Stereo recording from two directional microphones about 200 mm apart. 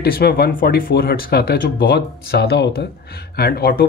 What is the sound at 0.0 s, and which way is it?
Speech, 50° left (ahead or behind).